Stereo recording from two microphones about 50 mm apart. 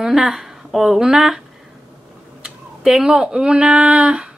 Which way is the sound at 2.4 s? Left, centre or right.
Centre.